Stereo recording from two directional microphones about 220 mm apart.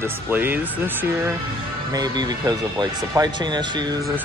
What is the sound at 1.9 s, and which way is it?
Speech, 20° right (ahead or behind).